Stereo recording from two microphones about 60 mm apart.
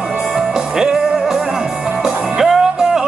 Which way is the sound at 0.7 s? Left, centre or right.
Centre.